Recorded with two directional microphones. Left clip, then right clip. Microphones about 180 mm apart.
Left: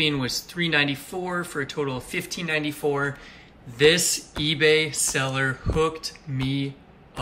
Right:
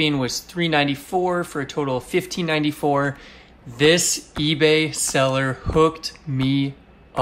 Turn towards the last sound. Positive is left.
turn(degrees=-20)  # may be behind; listen again after turning